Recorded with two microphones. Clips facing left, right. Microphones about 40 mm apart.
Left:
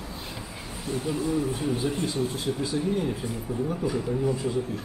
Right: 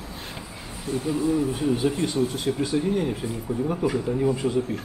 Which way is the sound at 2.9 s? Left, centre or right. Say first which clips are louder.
Right 2 dB; right.